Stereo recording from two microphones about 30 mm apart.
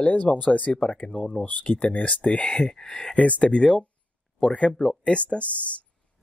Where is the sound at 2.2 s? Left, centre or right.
Left.